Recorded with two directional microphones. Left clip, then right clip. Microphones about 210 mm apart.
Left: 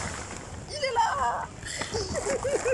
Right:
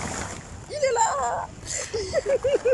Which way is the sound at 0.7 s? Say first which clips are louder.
Right 4 dB; 20° right (ahead or behind).